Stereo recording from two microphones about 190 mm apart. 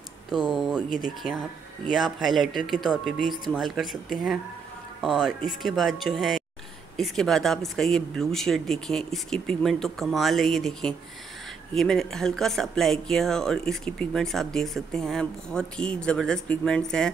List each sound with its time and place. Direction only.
0.3 s speech: centre (ahead or behind)
0.8 s speech: 45° left (ahead or behind)
1.9 s speech: centre (ahead or behind)
5.0 s speech: centre (ahead or behind)